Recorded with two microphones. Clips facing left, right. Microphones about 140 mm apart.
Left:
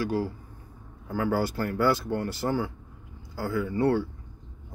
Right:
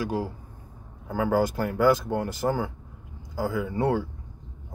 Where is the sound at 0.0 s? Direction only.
15° right (ahead or behind).